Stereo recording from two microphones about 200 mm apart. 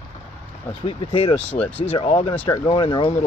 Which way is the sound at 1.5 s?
10° left (ahead or behind).